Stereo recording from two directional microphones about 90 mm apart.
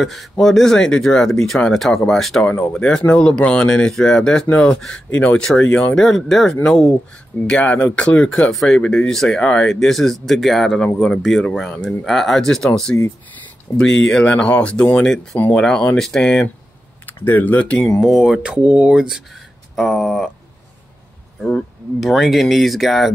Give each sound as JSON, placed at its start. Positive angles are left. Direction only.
{"t": 0.0, "sound": "speech", "side_deg": 0}
{"t": 2.4, "sound": "speech", "side_deg": 20}
{"t": 2.7, "sound": "speech", "side_deg": 10}
{"t": 8.3, "sound": "speech", "side_deg": 5}
{"t": 18.0, "sound": "speech", "side_deg": -5}
{"t": 22.0, "sound": "speech", "side_deg": 0}